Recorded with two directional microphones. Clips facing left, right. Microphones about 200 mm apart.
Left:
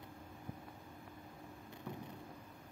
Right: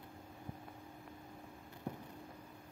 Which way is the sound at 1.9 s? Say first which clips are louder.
Right 3 dB; 35° right (ahead or behind).